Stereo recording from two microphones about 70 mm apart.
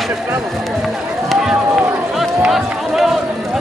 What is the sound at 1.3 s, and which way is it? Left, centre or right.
Run, centre.